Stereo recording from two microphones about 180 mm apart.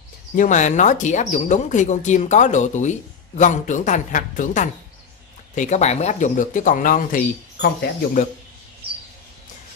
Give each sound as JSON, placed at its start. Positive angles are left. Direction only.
{"t": 0.4, "sound": "speech", "side_deg": 45}